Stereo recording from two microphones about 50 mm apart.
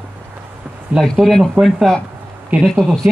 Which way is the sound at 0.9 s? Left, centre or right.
Right.